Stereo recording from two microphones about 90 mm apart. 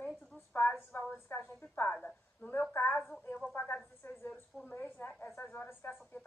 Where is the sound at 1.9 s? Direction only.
10° left (ahead or behind).